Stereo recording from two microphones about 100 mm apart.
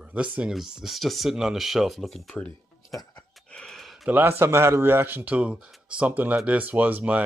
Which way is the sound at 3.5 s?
5° left (ahead or behind).